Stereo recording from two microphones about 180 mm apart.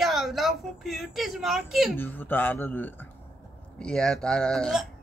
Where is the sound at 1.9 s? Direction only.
10° left (ahead or behind).